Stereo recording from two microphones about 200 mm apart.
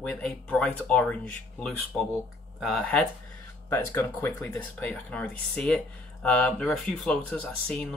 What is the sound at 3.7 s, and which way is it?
Speech, 10° left (ahead or behind).